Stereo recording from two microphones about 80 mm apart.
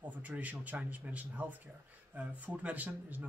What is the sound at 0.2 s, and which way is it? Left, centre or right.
Speech, right.